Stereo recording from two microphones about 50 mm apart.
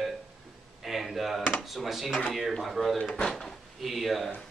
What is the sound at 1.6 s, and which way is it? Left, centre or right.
Speech, centre.